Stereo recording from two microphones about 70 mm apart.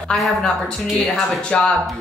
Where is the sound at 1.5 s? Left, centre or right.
Centre.